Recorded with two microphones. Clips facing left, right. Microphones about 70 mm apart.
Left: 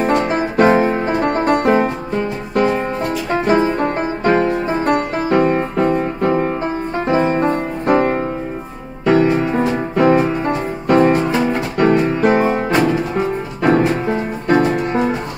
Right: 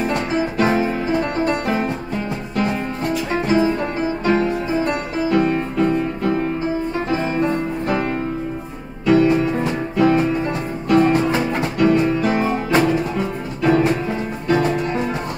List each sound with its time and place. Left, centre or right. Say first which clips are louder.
0.0 s music: left 4 dB; left